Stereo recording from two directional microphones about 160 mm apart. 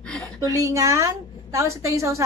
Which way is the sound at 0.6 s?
20° right (ahead or behind).